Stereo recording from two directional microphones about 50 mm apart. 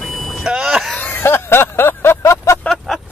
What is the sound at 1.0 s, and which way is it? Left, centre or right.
Vehicle, left.